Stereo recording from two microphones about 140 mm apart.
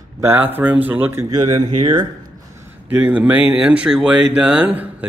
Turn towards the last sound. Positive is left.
turn(degrees=-10)  # may be behind; listen again after turning